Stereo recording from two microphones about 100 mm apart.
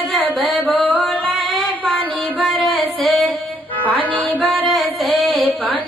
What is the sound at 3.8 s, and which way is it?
Music, 15° left (ahead or behind).